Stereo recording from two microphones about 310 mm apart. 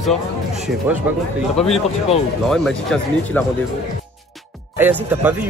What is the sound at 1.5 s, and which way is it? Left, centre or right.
Speech, centre.